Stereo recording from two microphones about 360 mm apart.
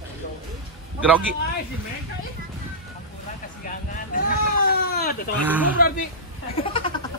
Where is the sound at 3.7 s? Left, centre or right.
Left.